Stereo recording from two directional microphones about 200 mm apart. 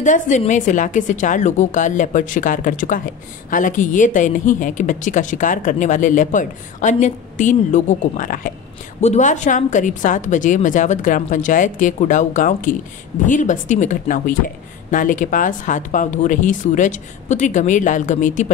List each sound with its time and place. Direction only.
0.0 s a woman's voice: 40° left (ahead or behind)